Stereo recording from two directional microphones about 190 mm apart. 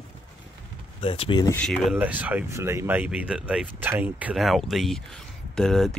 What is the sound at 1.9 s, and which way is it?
Speech, 10° right (ahead or behind).